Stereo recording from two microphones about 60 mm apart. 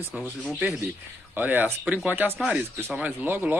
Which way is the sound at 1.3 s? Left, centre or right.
Right.